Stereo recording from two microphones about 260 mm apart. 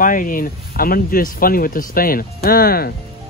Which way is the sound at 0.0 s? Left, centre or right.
Left.